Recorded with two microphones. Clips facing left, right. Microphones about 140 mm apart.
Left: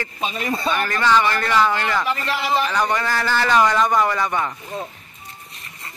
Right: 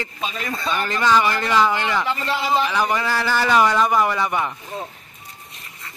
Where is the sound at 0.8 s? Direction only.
15° right (ahead or behind).